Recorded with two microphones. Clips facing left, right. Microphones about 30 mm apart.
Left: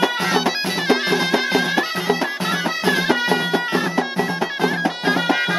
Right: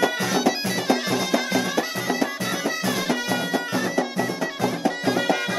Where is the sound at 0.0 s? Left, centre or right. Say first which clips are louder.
Left 3 dB; left.